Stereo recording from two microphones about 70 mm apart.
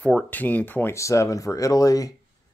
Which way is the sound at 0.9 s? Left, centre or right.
Left.